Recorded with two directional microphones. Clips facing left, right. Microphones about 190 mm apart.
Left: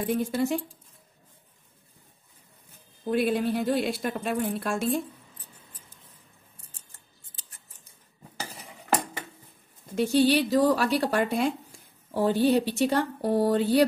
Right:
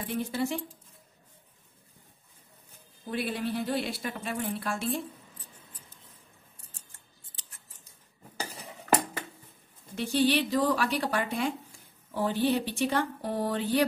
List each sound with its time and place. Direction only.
0.1 s speech: 45° left (ahead or behind)
3.1 s speech: 50° left (ahead or behind)
9.9 s speech: 45° left (ahead or behind)